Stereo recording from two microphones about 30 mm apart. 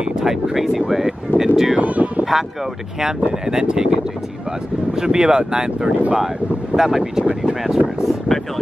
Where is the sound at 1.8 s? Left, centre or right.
Right.